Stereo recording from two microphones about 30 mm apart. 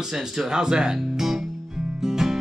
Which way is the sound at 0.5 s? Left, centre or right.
Right.